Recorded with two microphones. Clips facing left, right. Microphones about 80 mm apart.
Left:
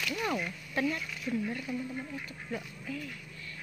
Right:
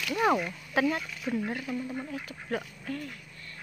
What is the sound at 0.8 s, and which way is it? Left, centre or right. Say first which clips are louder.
Speech: right 5 dB; right.